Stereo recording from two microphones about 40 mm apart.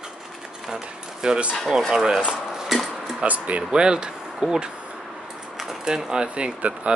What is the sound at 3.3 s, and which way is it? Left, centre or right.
Speech, right.